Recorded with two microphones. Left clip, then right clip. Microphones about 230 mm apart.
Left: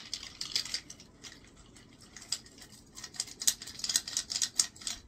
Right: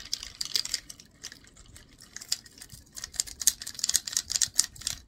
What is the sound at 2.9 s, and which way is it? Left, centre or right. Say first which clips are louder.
Typewriter: right 5 dB; right.